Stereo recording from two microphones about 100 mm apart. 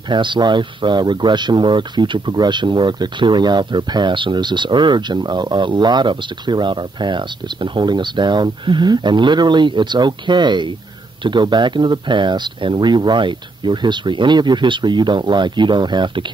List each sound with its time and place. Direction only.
0.1 s speech: 50° right (ahead or behind)